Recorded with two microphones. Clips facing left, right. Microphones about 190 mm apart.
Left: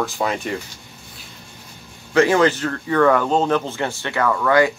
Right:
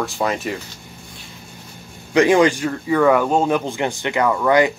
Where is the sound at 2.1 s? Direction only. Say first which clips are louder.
Right 2 dB; 15° right (ahead or behind).